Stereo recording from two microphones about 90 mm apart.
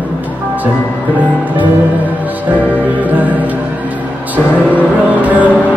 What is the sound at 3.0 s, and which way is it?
Music, 20° right (ahead or behind).